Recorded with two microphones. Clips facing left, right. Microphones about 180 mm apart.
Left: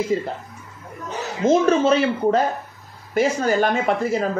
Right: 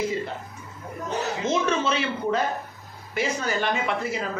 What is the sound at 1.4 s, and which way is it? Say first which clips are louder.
A man's voice: left 10 dB; 45° left (ahead or behind).